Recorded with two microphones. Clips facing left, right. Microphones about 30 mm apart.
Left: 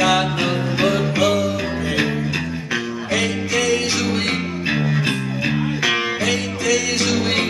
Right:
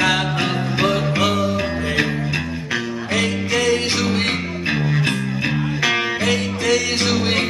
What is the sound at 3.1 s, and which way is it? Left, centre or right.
Music, right.